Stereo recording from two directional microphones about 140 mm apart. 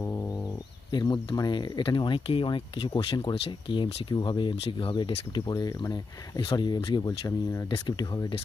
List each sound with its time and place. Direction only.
0.9 s speech: 30° left (ahead or behind)